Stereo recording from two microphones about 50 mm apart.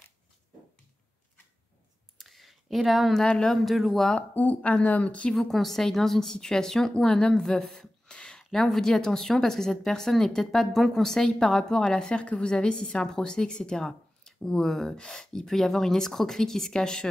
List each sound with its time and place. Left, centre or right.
2.1 s a sound: centre
3.3 s a woman's voice: centre
3.6 s speech: centre
4.3 s speech: left
4.6 s speech: left
5.3 s a woman's voice: centre